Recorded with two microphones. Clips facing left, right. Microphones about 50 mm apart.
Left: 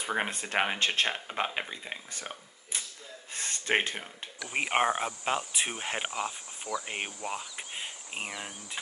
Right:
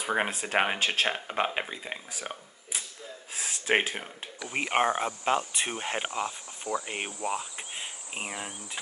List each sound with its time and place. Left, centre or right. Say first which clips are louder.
0.0 s speech: right 3 dB; centre
4.5 s speech: right 1 dB; centre
7.2 s cricket: right 4 dB; centre